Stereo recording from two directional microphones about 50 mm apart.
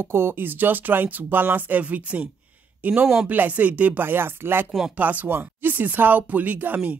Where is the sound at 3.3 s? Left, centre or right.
Right.